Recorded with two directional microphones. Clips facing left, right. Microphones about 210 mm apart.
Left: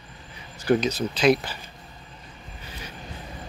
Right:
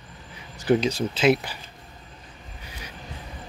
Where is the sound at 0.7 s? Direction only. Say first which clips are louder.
Right 1 dB; 20° right (ahead or behind).